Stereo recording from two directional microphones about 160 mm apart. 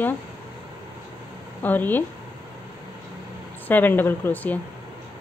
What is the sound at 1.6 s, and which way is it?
Speech, 10° left (ahead or behind).